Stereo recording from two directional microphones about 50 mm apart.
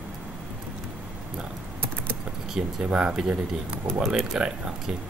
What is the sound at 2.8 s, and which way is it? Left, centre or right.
Speech, right.